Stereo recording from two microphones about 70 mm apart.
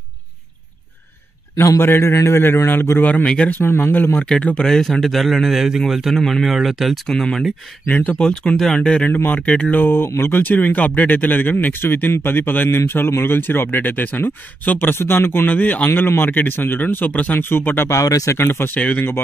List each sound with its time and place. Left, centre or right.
1.8 s a man's voice: left
4.3 s a man's voice: centre
7.1 s a man's voice: centre
7.9 s speech: left
8.2 s speech: centre
9.1 s speech: left
17.4 s a man's voice: left
17.8 s speech: left
18.8 s speech: left